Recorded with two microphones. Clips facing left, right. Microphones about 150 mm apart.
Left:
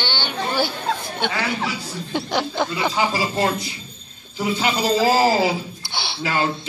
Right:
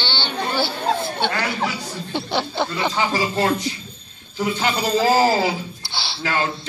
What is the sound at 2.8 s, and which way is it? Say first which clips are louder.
Speech: right 1 dB; 5° left (ahead or behind).